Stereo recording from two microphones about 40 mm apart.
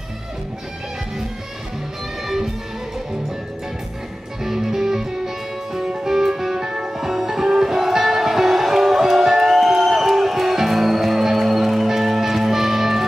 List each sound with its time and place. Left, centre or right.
2.2 s music: centre
4.4 s music: centre
5.9 s music: right
6.1 s music: centre